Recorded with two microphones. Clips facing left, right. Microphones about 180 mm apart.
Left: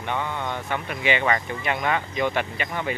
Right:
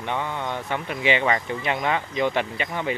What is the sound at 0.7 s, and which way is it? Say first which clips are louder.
Speech: right 2 dB; 25° right (ahead or behind).